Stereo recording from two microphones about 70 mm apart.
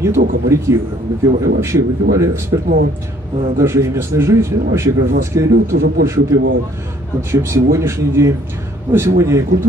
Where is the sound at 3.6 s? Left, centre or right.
Right.